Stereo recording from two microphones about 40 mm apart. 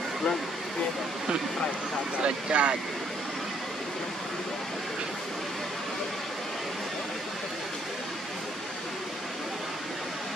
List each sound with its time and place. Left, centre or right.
2.2 s speech: right